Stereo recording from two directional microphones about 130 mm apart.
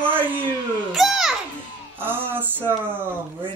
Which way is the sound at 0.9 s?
Centre (ahead or behind).